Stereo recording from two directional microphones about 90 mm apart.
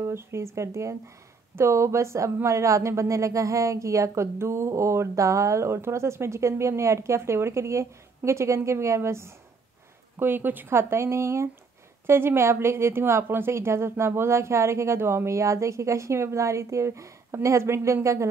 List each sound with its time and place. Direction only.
0.0 s speech: 30° right (ahead or behind)